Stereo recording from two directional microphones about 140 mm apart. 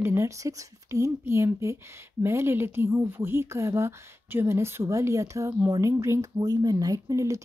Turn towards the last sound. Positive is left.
turn(degrees=-20)  # may be behind; listen again after turning